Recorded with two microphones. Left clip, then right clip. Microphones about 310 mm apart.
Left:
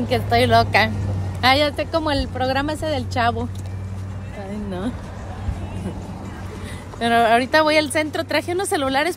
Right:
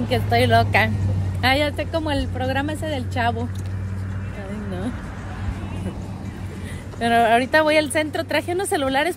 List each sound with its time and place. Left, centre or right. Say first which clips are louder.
0.1 s speech: left 2 dB; centre
4.6 s speech: left 2 dB; centre
7.0 s speech: left 1 dB; centre